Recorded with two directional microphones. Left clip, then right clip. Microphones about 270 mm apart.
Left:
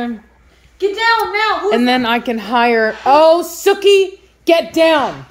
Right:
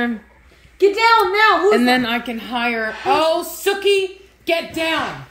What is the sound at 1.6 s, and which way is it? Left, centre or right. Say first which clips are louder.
A woman's voice: left 1 dB; centre.